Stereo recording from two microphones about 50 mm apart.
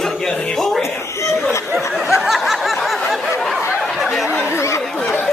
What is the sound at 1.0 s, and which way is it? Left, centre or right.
Speech, left.